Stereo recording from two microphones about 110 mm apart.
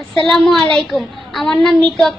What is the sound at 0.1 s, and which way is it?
A woman's voice, centre (ahead or behind).